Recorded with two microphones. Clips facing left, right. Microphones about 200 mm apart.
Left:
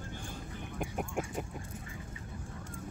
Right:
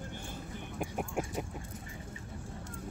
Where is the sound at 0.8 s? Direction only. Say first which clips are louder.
Right 1 dB; 5° right (ahead or behind).